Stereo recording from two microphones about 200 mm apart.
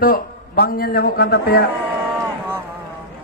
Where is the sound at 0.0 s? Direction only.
50° left (ahead or behind).